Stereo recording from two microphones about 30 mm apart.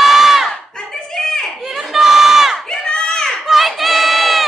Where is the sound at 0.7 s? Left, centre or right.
Centre.